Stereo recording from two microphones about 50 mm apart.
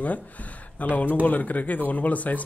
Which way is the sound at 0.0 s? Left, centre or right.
Left.